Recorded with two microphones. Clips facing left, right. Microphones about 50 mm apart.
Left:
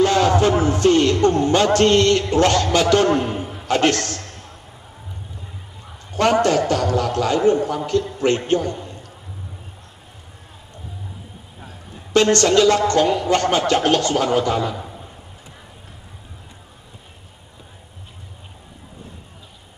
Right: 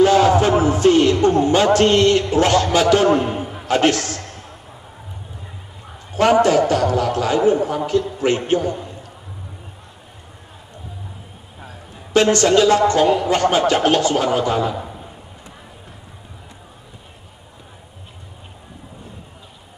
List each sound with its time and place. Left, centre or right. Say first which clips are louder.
0.0 s a man's voice: right 3 dB; centre
6.1 s a man's voice: right 3 dB; centre
12.1 s a man's voice: right 1 dB; centre